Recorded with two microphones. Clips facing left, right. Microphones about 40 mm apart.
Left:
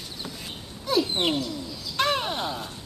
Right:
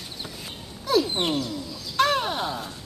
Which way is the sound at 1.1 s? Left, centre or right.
Centre.